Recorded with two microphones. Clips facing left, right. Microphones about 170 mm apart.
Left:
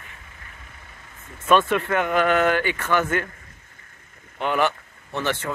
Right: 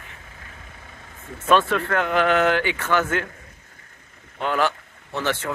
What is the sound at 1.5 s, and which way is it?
Speech, 10° left (ahead or behind).